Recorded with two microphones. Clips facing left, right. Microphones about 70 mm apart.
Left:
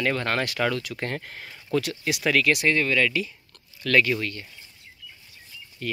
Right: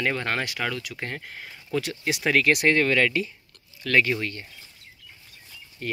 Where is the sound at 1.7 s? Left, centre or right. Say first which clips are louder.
Left 1 dB; right.